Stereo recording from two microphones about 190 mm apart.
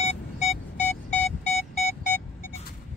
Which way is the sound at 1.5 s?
35° left (ahead or behind).